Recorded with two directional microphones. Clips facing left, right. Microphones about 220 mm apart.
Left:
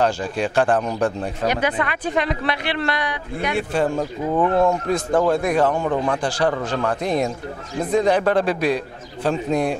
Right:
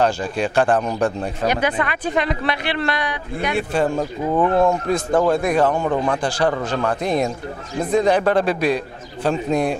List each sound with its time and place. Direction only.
0.0 s speech: 15° right (ahead or behind)
3.9 s speech: 25° right (ahead or behind)